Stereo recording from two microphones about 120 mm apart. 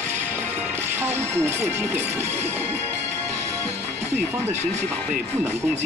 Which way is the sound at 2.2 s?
65° right (ahead or behind).